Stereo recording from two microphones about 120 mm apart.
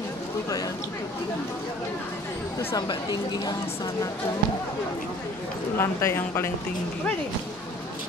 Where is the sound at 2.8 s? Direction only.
35° left (ahead or behind).